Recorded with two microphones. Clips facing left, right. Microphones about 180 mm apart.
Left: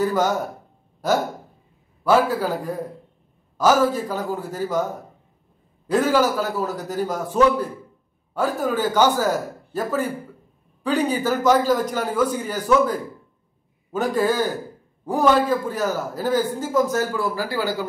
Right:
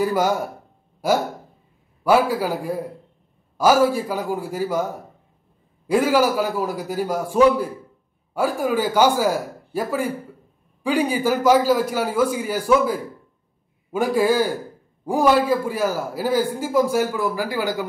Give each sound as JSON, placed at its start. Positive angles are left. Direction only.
{"t": 0.0, "sound": "a man's voice", "side_deg": -10}
{"t": 5.9, "sound": "a man's voice", "side_deg": -10}